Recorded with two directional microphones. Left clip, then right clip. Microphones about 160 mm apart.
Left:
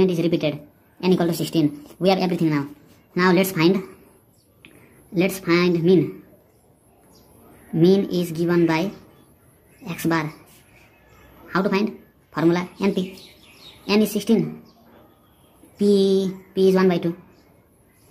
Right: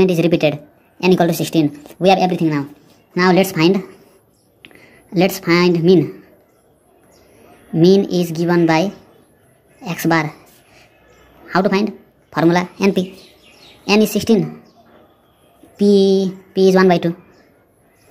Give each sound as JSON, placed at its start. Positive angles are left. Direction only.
{"t": 0.0, "sound": "a woman's voice", "side_deg": -25}
{"t": 5.1, "sound": "a woman's voice", "side_deg": -25}
{"t": 7.7, "sound": "a woman's voice", "side_deg": -20}
{"t": 11.4, "sound": "a woman's voice", "side_deg": -20}
{"t": 15.7, "sound": "a woman's voice", "side_deg": -15}